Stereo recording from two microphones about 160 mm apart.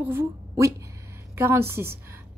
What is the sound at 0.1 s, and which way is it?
A woman's voice, 15° right (ahead or behind).